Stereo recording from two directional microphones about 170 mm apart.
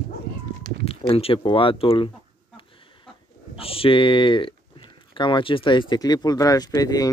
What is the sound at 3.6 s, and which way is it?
Speech, 35° left (ahead or behind).